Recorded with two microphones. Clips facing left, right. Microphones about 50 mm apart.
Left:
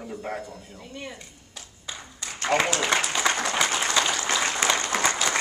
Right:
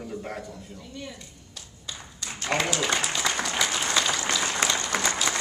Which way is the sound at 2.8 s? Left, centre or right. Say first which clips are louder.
Left 3 dB; left.